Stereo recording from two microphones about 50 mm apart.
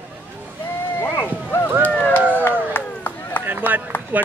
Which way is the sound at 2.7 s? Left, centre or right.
Left.